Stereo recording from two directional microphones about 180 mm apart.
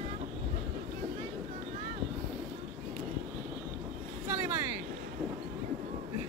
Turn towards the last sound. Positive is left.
turn(degrees=-15)  # may be behind; listen again after turning